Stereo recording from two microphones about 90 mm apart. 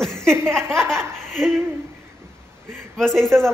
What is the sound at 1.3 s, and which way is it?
Speech, 5° left (ahead or behind).